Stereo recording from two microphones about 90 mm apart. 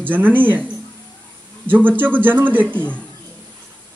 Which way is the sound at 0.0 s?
20° right (ahead or behind).